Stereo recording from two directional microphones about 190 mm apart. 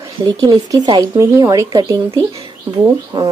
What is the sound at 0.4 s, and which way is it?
Speech, 20° right (ahead or behind).